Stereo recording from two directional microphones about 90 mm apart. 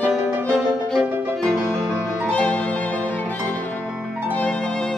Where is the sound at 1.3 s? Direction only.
Centre (ahead or behind).